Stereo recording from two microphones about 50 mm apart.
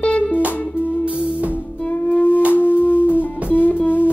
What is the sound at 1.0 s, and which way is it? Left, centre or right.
Music, right.